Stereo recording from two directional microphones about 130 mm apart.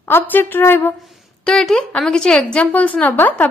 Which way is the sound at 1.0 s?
5° left (ahead or behind).